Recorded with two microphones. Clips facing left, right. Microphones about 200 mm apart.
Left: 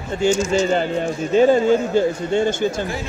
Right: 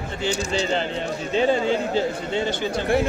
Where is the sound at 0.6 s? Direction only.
45° left (ahead or behind).